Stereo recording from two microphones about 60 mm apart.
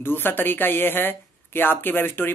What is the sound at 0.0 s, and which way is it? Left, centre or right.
Speech, left.